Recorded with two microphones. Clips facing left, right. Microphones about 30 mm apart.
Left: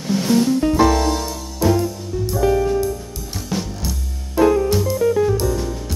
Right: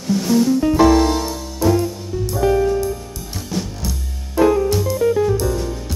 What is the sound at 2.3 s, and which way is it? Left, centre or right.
Music, centre.